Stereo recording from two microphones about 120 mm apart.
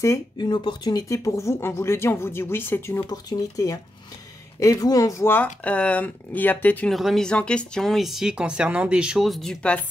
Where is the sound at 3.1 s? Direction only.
30° left (ahead or behind); by 6.9 s 15° left (ahead or behind).